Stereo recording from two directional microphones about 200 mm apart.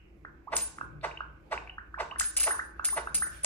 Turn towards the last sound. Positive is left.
turn(degrees=10)  # may be behind; listen again after turning